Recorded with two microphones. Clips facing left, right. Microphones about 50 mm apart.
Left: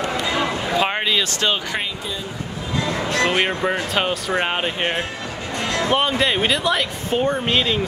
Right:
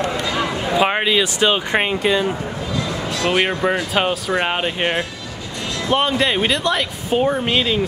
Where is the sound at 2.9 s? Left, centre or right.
Left.